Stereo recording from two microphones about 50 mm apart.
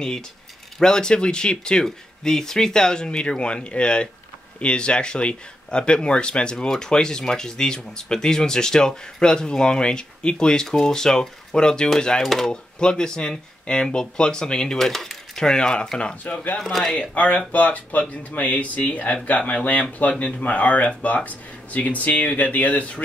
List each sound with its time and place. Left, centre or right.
0.7 s speech: centre
12.4 s speech: centre
16.5 s speech: centre
16.9 s speech: left